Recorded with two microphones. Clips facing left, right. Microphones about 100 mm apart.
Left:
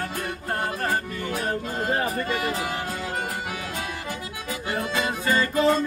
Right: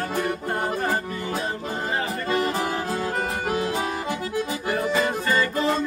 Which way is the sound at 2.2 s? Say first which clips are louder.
Right 3 dB; 35° right (ahead or behind).